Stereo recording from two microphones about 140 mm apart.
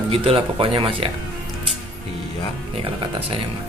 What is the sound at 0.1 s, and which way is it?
Speech, 40° right (ahead or behind).